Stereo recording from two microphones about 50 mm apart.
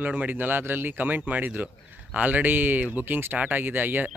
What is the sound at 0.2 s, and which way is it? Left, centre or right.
Speech, right.